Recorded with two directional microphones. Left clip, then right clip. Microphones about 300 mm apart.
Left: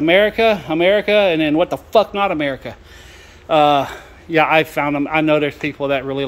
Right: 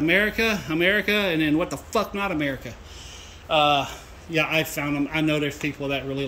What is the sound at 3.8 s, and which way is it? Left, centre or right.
A man's voice, centre.